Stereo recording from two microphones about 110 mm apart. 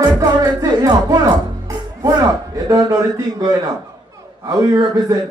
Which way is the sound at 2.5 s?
35° right (ahead or behind).